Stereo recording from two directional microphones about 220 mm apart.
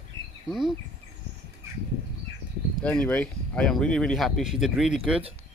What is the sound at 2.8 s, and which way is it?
Speech, 5° left (ahead or behind).